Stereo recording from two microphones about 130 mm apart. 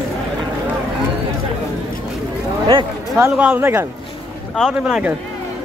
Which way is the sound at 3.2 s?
15° right (ahead or behind).